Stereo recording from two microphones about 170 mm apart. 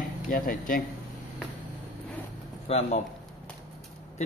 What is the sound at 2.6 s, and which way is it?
Speech, 40° left (ahead or behind).